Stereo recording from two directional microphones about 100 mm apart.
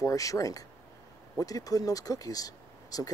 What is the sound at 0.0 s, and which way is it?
Speech, 35° left (ahead or behind).